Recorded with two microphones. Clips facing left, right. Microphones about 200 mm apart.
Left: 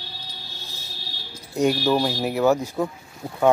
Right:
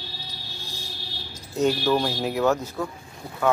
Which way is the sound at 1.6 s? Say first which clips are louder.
Left 2 dB; 10° left (ahead or behind).